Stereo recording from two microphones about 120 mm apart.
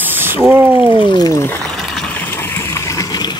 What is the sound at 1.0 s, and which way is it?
Speech, 40° left (ahead or behind).